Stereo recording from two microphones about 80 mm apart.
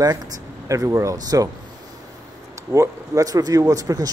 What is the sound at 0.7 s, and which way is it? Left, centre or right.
Speech, right.